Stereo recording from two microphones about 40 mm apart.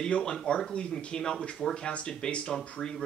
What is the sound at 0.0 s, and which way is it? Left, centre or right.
Speech, centre.